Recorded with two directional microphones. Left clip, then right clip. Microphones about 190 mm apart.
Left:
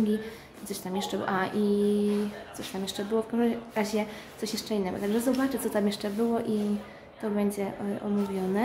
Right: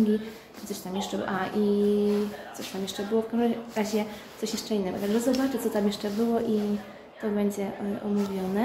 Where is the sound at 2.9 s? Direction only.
20° left (ahead or behind).